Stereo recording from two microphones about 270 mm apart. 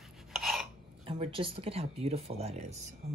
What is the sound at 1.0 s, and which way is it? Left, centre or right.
Speech, right.